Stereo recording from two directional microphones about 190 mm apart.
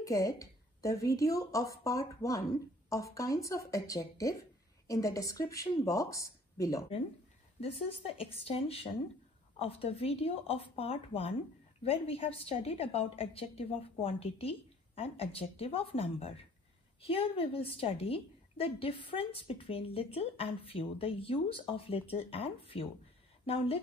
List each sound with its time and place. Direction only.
0.0 s speech: 15° left (ahead or behind)
7.6 s a woman's voice: 30° left (ahead or behind)